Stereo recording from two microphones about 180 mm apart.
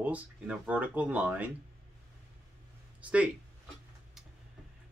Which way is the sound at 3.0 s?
5° right (ahead or behind).